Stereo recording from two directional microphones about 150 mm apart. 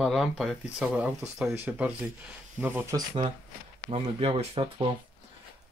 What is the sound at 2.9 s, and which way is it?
Speech, 35° right (ahead or behind).